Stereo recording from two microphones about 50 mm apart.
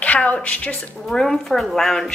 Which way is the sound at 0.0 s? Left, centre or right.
Left.